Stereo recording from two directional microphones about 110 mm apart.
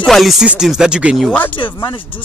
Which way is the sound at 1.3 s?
15° left (ahead or behind).